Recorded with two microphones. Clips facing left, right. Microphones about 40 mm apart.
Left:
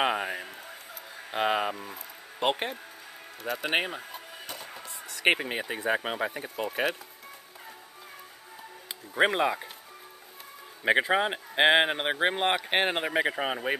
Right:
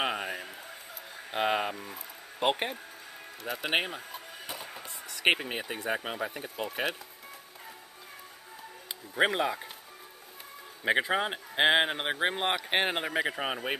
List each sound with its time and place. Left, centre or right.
0.0 s a sound: centre
3.4 s speech: centre
4.5 s a sound: centre
5.4 s speech: centre
5.9 s speech: left
6.3 s speech: centre
9.1 s speech: centre
10.8 s speech: centre